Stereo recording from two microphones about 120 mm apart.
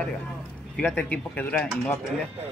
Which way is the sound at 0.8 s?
10° left (ahead or behind).